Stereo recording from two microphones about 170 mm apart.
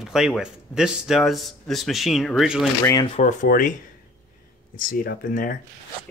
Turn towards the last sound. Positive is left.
turn(degrees=55)  # may be behind; listen again after turning